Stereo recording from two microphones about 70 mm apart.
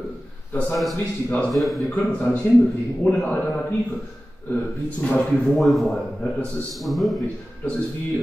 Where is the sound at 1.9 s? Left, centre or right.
Left.